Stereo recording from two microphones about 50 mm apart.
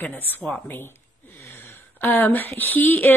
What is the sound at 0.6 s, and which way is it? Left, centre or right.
Speech, left.